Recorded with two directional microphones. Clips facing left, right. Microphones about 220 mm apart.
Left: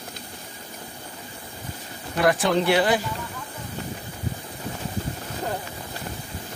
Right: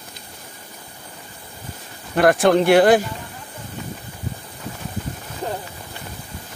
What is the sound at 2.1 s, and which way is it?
Speech, 55° right (ahead or behind).